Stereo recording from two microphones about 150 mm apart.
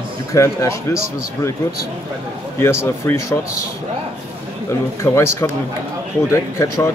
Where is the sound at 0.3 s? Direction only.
20° left (ahead or behind).